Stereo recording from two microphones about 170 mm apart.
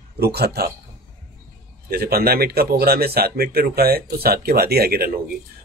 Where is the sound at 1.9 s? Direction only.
65° right (ahead or behind).